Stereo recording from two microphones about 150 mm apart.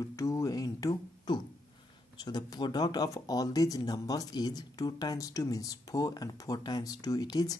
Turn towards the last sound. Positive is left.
turn(degrees=25)  # may be behind; listen again after turning